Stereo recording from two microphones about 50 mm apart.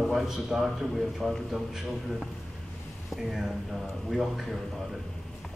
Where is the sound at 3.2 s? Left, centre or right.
Centre.